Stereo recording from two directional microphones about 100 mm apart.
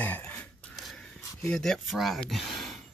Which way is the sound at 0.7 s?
Centre (ahead or behind).